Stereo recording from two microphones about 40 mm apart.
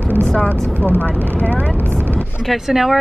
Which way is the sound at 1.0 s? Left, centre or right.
Left.